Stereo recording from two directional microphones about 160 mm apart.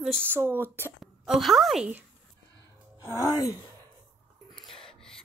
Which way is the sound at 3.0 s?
20° left (ahead or behind).